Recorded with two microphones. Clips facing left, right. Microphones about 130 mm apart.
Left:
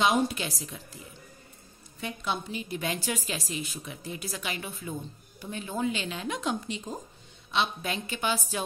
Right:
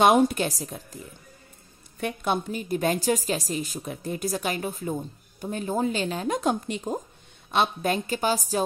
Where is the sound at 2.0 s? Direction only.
55° right (ahead or behind).